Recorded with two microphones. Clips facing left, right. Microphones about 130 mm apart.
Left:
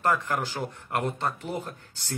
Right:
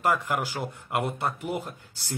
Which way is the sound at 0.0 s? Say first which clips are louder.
Even; 10° right (ahead or behind).